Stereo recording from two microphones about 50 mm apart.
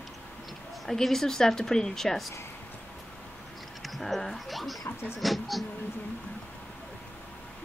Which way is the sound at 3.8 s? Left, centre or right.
Centre.